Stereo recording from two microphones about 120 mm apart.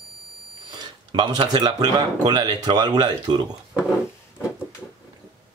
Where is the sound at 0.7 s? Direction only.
35° right (ahead or behind).